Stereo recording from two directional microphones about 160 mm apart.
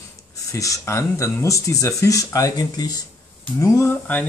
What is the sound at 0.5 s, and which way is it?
Speech, 20° left (ahead or behind).